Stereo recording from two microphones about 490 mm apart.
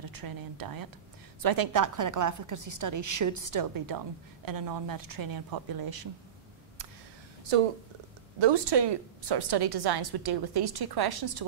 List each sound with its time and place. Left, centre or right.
0.0 s a woman's voice: right
7.5 s speech: right
8.4 s a woman's voice: right